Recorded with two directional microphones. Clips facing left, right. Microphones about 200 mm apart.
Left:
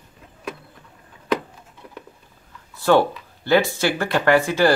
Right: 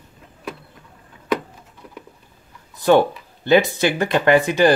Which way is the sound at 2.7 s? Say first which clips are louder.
Right 2 dB; 20° right (ahead or behind).